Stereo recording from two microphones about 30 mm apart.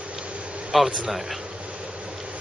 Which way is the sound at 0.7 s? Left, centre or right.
Centre.